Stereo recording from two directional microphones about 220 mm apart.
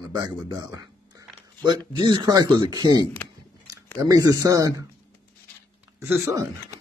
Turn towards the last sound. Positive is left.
turn(degrees=-10)  # may be behind; listen again after turning